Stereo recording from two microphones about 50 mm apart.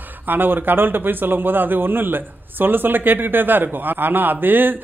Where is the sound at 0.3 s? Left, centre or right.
Right.